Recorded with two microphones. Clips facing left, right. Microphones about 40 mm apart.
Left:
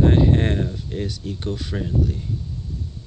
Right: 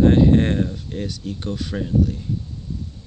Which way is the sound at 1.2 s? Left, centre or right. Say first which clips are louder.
Right 1 dB; centre.